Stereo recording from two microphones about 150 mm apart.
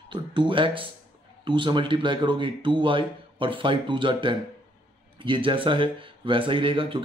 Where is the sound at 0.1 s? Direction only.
35° right (ahead or behind).